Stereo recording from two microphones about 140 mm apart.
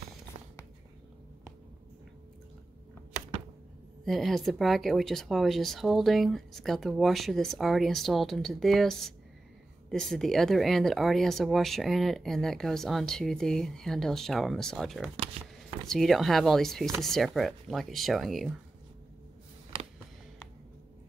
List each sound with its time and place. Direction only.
0.3 s writing: 55° right (ahead or behind)
4.0 s speech: centre (ahead or behind)